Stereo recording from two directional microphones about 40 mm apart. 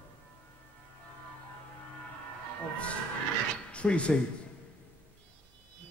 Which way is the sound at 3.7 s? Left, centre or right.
Left.